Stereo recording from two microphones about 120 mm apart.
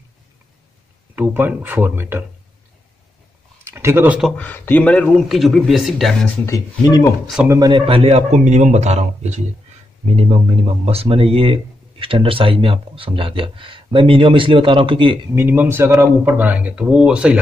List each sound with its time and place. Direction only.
1.1 s speech: 15° right (ahead or behind)
3.6 s a sound: 20° right (ahead or behind)
4.4 s speech: 15° left (ahead or behind)
5.3 s speech: centre (ahead or behind)
6.4 s speech: 25° left (ahead or behind)
7.4 s speech: 30° right (ahead or behind)
7.8 s speech: 55° right (ahead or behind)
15.3 s speech: 15° right (ahead or behind)